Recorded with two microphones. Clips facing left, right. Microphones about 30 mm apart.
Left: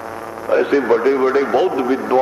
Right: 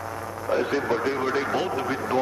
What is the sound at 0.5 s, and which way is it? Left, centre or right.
Speech, left.